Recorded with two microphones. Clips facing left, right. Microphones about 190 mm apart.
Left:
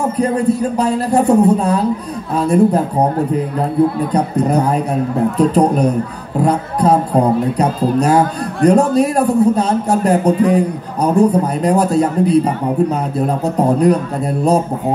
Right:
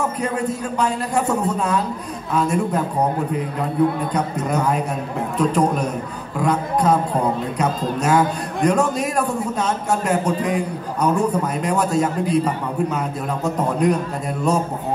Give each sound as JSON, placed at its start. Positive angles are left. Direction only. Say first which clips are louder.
{"t": 0.2, "sound": "a man's voice", "louder": "left 8 dB", "side_deg": 35}
{"t": 4.1, "sound": "a man's voice", "louder": "left 7 dB", "side_deg": 35}